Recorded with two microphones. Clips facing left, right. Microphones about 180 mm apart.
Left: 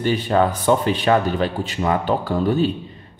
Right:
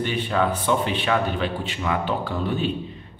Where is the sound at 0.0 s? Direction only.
40° left (ahead or behind).